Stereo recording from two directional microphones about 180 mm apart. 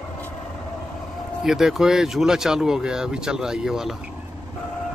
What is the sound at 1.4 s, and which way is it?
Speech, centre (ahead or behind).